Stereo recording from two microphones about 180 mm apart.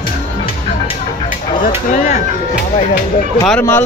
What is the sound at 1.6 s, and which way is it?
Speech, 40° left (ahead or behind).